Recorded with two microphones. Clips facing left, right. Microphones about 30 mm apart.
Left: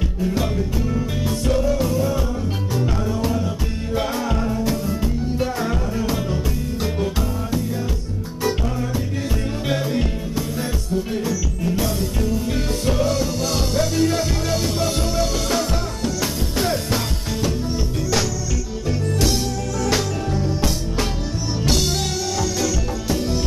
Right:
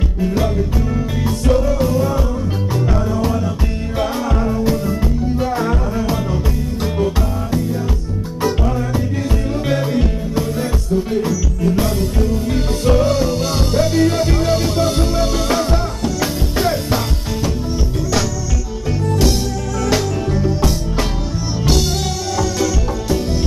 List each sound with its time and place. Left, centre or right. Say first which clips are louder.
0.9 s music: right 3 dB; centre
11.1 s music: right 5 dB; centre
18.9 s music: right 4 dB; centre
22.4 s music: right 6 dB; centre